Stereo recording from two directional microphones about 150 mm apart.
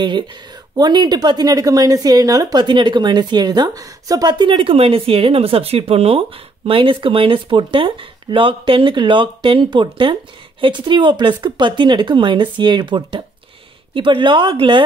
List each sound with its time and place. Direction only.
0.7 s a woman's voice: 30° right (ahead or behind)